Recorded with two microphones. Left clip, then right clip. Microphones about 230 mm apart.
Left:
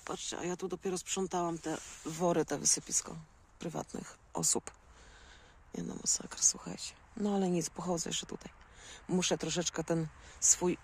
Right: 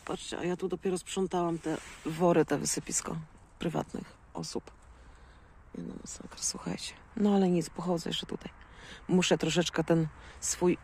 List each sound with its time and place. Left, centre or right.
0.1 s speech: centre
4.3 s speech: left
6.5 s speech: centre